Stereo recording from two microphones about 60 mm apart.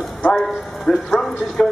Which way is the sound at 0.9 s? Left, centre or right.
Centre.